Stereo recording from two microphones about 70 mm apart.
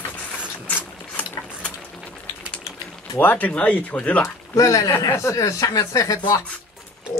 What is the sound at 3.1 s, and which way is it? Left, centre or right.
Speech, left.